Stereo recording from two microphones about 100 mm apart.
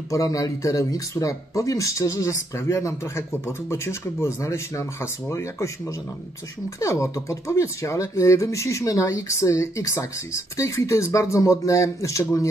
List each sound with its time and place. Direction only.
0.1 s a man's voice: 35° left (ahead or behind)